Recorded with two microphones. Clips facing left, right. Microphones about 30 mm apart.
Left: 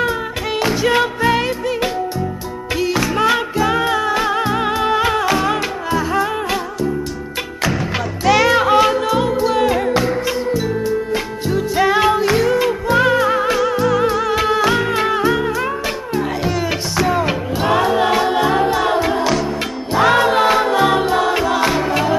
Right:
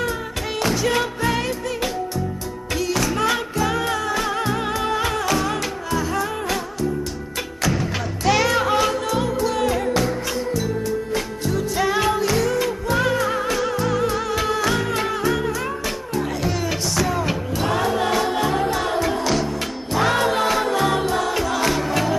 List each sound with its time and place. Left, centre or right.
0.6 s music: left
8.5 s music: left
13.6 s music: centre
14.2 s music: left